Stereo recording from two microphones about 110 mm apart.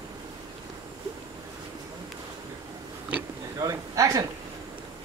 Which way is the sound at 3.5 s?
30° right (ahead or behind).